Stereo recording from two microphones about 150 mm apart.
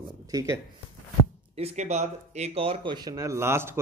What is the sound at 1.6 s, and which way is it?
Speech, 45° right (ahead or behind).